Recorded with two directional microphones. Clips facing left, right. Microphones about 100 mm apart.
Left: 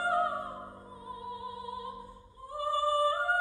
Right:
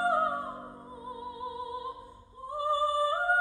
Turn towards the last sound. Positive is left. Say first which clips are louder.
# even
turn(degrees=-20)  # may be behind; listen again after turning